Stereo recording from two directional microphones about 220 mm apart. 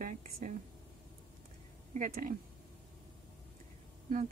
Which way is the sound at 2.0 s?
40° right (ahead or behind).